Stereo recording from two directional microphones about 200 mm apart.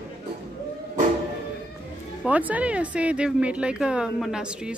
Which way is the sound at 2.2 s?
5° right (ahead or behind).